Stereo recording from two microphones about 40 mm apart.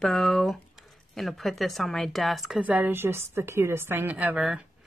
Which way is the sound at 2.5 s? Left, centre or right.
Right.